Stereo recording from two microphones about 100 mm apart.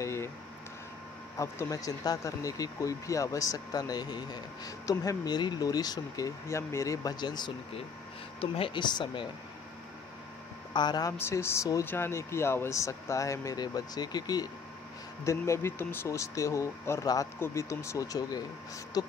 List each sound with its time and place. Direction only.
0.0 s a sound: 30° left (ahead or behind)
1.4 s speech: 35° left (ahead or behind)
8.4 s speech: 65° left (ahead or behind)
10.7 s speech: 45° left (ahead or behind)
11.1 s speech: 25° left (ahead or behind); by 14.5 s 40° left (ahead or behind)
15.2 s speech: 30° left (ahead or behind)